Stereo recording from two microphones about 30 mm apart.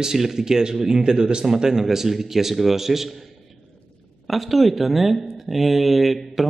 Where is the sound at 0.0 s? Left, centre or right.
Centre.